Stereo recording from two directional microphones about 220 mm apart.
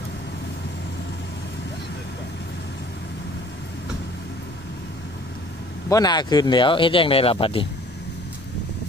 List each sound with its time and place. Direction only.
5.9 s speech: 15° left (ahead or behind)